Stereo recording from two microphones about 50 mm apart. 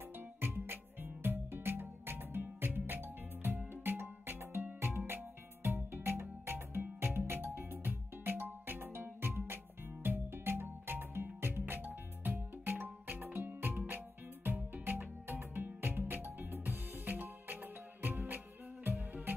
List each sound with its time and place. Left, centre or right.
0.4 s music: right